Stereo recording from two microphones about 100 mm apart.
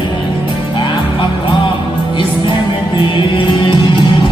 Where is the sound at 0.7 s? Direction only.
55° left (ahead or behind).